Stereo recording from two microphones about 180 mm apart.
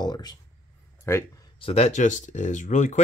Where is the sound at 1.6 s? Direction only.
30° left (ahead or behind).